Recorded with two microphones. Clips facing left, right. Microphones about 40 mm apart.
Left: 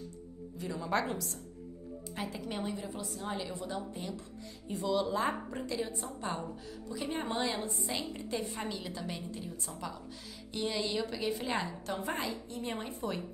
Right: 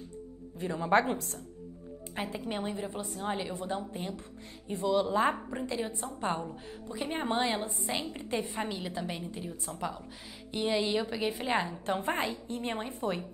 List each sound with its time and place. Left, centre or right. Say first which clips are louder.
0.6 s a woman's voice: right 6 dB; right
5.3 s a woman's voice: right 3 dB; centre
5.7 s a woman's voice: even; right